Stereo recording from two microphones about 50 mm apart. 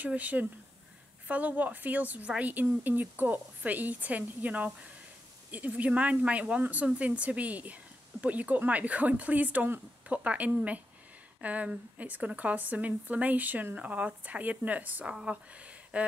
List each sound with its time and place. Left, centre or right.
0.0 s a woman's voice: right
15.0 s speech: centre
15.5 s a sound: right